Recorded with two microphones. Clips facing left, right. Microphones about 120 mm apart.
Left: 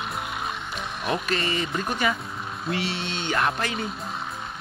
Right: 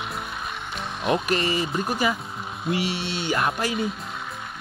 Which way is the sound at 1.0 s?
20° right (ahead or behind).